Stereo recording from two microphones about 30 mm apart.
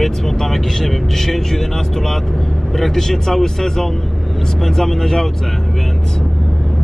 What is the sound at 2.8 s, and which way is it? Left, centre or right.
Speech, centre.